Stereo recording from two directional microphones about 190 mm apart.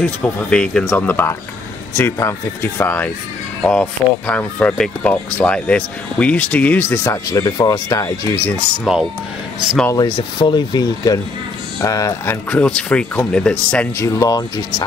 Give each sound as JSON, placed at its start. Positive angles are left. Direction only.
{"t": 0.0, "sound": "speech", "side_deg": 5}
{"t": 8.9, "sound": "speech", "side_deg": 0}
{"t": 9.8, "sound": "speech", "side_deg": 20}
{"t": 12.4, "sound": "speech", "side_deg": 5}